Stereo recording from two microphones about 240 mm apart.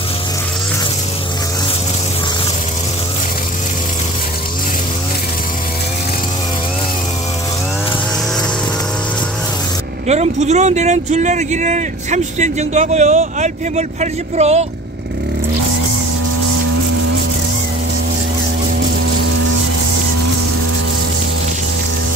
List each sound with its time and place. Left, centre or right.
10.0 s speech: right